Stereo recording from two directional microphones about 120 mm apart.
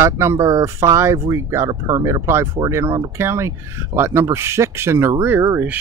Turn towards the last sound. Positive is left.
turn(degrees=-20)  # may be behind; listen again after turning